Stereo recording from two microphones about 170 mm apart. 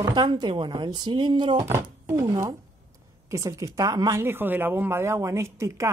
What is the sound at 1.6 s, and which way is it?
Speech, 15° right (ahead or behind).